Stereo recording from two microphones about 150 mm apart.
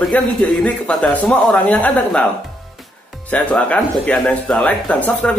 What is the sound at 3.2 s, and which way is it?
Speech, 10° left (ahead or behind).